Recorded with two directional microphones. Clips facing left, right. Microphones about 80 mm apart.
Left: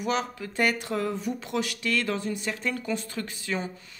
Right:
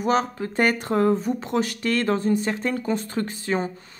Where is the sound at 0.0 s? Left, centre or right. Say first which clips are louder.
Right 6 dB; right.